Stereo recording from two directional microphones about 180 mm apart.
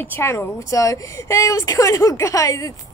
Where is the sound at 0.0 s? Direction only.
10° left (ahead or behind).